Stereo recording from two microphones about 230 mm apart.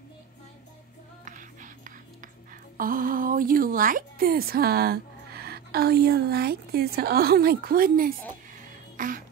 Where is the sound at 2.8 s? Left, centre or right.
Right.